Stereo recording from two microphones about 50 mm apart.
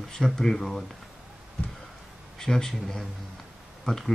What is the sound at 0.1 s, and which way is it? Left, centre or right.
Speech, centre.